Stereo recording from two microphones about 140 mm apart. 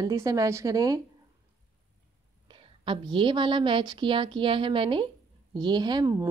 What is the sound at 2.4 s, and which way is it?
A woman's voice, 35° right (ahead or behind).